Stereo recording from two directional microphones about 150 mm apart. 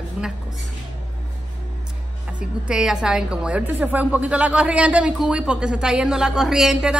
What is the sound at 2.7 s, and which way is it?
A woman's voice, 5° right (ahead or behind).